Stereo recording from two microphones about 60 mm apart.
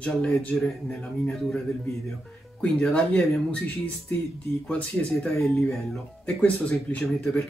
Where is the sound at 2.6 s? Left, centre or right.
Centre.